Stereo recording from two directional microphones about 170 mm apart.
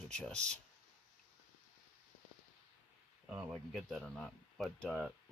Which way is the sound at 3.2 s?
10° right (ahead or behind).